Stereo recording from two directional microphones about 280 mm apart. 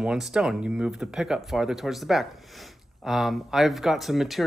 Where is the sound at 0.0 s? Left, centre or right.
Centre.